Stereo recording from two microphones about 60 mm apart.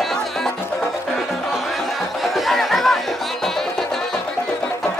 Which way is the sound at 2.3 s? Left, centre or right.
Centre.